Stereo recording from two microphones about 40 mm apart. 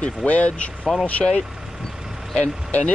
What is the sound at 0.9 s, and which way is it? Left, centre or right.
Speech, centre.